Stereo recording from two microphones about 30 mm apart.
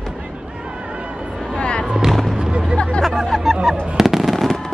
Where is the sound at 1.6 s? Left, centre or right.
Left.